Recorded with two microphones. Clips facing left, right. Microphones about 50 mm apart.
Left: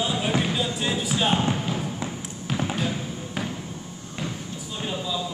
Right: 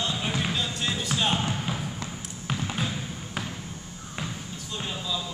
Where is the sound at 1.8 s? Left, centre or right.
Centre.